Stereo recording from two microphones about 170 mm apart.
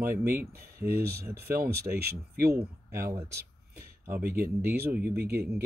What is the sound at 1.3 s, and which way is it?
Speech, 65° right (ahead or behind).